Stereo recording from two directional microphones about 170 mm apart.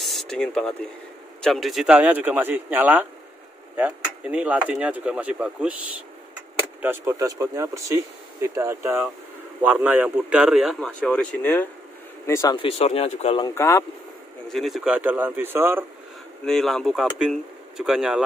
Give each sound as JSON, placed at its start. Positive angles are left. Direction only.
{"t": 0.0, "sound": "speech", "side_deg": 0}
{"t": 12.6, "sound": "speech", "side_deg": 35}
{"t": 13.6, "sound": "speech", "side_deg": 15}
{"t": 14.5, "sound": "speech", "side_deg": 0}
{"t": 16.4, "sound": "speech", "side_deg": 0}